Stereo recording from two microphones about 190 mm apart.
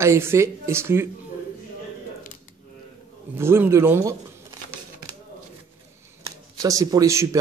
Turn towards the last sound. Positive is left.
turn(degrees=-15)  # may be behind; listen again after turning